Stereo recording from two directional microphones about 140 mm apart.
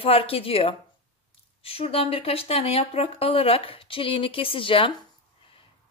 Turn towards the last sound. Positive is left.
turn(degrees=40)  # may be behind; listen again after turning